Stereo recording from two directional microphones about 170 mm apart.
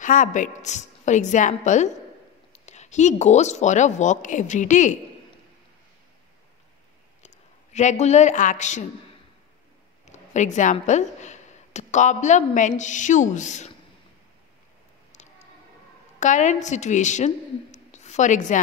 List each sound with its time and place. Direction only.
0.0 s speech: 50° left (ahead or behind)
7.2 s speech: 40° left (ahead or behind)
10.0 s speech: 45° left (ahead or behind)
16.2 s a woman's voice: 45° left (ahead or behind)